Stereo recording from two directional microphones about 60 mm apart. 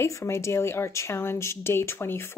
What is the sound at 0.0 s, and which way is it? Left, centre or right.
Speech, left.